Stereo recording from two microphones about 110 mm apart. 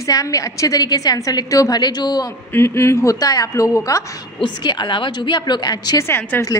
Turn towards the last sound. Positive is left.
turn(degrees=20)  # may be behind; listen again after turning